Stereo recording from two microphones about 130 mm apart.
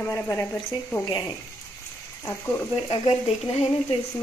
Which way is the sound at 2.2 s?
20° left (ahead or behind).